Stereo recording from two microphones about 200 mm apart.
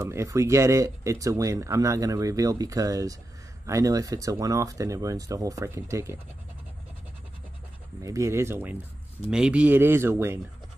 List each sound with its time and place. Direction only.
0.0 s speech: 15° right (ahead or behind)
8.0 s speech: 15° right (ahead or behind)